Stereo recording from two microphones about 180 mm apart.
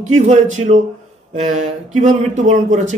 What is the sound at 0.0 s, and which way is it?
Speech, 40° right (ahead or behind).